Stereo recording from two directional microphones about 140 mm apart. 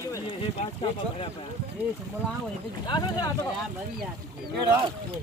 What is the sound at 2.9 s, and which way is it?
Speech, 30° left (ahead or behind).